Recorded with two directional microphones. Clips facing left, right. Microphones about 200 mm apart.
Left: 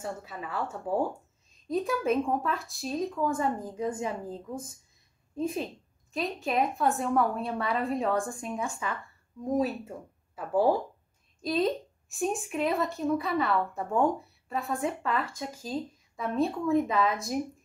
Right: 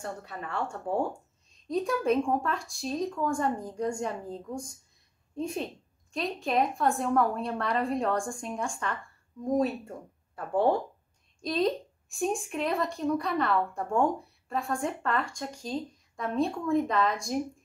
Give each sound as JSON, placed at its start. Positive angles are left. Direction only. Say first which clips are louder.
{"t": 0.0, "sound": "a woman's voice", "louder": "left 1 dB", "side_deg": 5}